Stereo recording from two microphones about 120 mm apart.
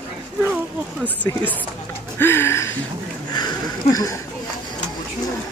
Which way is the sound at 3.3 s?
35° left (ahead or behind).